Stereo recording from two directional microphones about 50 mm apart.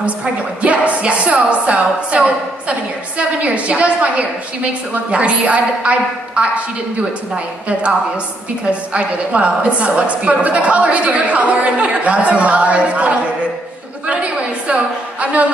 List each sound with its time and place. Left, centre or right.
0.0 s a woman's voice: right
8.6 s a woman's voice: right
14.0 s a sound: right